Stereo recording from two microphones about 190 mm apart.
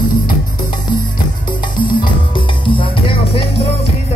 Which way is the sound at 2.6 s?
30° left (ahead or behind).